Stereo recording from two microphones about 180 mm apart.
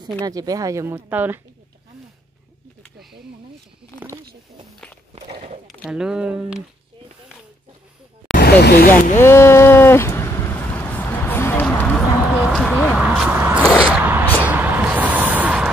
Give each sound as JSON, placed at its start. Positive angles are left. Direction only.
{"t": 0.2, "sound": "speech", "side_deg": -20}
{"t": 5.1, "sound": "walk", "side_deg": -35}
{"t": 5.7, "sound": "speech", "side_deg": 0}
{"t": 8.3, "sound": "vehicle", "side_deg": 60}
{"t": 9.1, "sound": "a sound", "side_deg": 15}
{"t": 12.2, "sound": "vehicle", "side_deg": 0}
{"t": 13.8, "sound": "a sound", "side_deg": -10}